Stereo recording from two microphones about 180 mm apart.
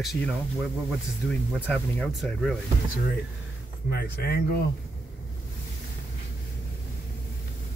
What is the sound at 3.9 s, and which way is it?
Speech, 60° left (ahead or behind).